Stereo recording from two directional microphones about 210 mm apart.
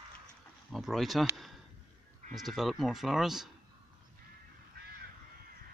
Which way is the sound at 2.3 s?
Centre (ahead or behind).